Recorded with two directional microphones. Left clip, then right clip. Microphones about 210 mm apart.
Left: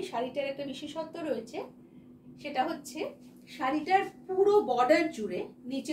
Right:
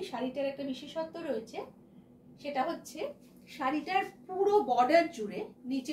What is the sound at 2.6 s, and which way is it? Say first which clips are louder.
Speech: left 1 dB; 25° left (ahead or behind).